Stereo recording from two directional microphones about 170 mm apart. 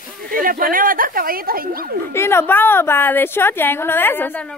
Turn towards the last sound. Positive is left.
turn(degrees=10)  # may be behind; listen again after turning